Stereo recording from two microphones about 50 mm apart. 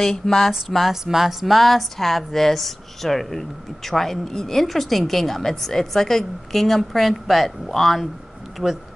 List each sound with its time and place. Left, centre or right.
0.0 s speech: centre